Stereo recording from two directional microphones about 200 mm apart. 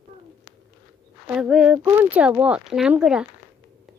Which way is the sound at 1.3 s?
5° right (ahead or behind).